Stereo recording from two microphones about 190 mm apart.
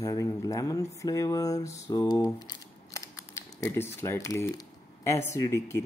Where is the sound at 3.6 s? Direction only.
15° left (ahead or behind).